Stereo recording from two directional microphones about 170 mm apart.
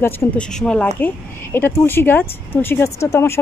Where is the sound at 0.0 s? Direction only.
15° left (ahead or behind).